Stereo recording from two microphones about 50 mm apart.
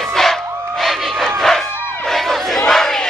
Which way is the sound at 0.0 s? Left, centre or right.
Centre.